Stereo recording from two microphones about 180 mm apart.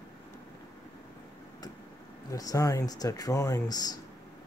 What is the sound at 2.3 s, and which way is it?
Speech, 20° left (ahead or behind).